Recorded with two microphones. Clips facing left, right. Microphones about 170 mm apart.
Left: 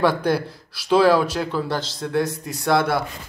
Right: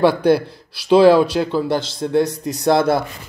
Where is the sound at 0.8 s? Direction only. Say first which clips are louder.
Right 5 dB; 25° right (ahead or behind).